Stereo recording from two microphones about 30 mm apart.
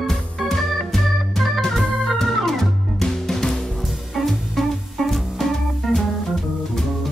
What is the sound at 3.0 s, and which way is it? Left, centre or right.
Music, centre.